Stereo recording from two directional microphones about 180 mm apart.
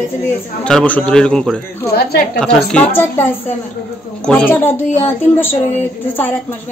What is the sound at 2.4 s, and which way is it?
Speech, 5° left (ahead or behind).